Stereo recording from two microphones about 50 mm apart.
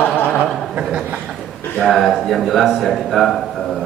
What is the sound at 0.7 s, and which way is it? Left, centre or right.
Chuckle, right.